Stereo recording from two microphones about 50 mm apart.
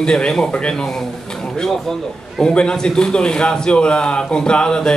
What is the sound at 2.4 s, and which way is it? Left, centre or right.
A man's voice, centre.